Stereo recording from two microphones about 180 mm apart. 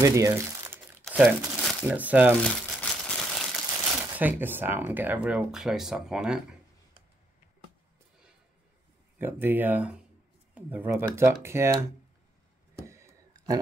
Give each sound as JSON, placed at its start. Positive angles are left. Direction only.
{"t": 0.0, "sound": "speech", "side_deg": -15}
{"t": 1.0, "sound": "crumpling", "side_deg": 0}
{"t": 1.9, "sound": "speech", "side_deg": -10}
{"t": 2.4, "sound": "crumpling", "side_deg": 5}
{"t": 4.1, "sound": "speech", "side_deg": -10}
{"t": 9.2, "sound": "speech", "side_deg": -10}
{"t": 12.8, "sound": "a sound", "side_deg": -15}